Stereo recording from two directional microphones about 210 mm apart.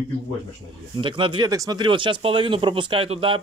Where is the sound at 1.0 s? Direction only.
25° right (ahead or behind).